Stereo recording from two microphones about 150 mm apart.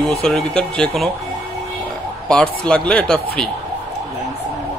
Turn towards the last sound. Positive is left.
turn(degrees=5)  # may be behind; listen again after turning